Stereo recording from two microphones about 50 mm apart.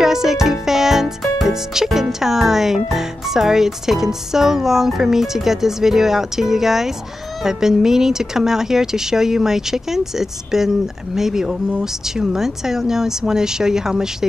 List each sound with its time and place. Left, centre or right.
0.0 s music: centre
1.5 s speech: centre